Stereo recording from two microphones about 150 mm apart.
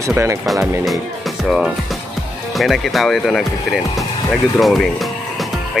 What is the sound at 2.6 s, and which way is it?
Speech, centre (ahead or behind).